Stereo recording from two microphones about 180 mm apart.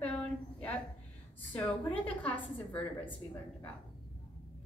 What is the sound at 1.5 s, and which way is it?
A woman's voice, 10° left (ahead or behind).